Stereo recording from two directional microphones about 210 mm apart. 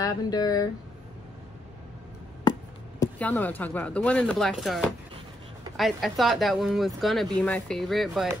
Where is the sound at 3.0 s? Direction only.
10° left (ahead or behind).